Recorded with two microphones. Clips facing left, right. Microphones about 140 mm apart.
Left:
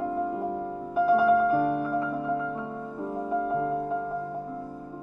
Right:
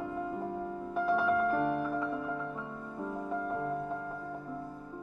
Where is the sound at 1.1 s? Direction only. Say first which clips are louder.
Left 7 dB; 5° left (ahead or behind).